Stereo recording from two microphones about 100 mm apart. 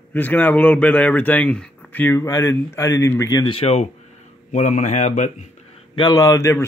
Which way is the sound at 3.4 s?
70° left (ahead or behind).